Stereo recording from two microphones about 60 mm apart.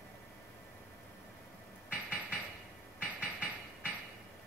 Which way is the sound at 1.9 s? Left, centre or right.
Right.